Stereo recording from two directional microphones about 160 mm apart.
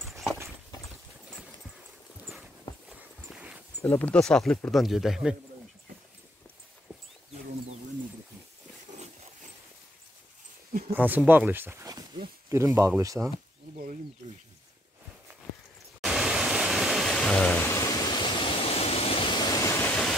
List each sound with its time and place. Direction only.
0.1 s a sound: centre (ahead or behind)
3.3 s a sound: 5° right (ahead or behind)
3.8 s speech: 10° left (ahead or behind)
11.0 s speech: 10° right (ahead or behind)
16.0 s pink noise: centre (ahead or behind); by 19.9 s 20° left (ahead or behind)
19.9 s train: 5° left (ahead or behind)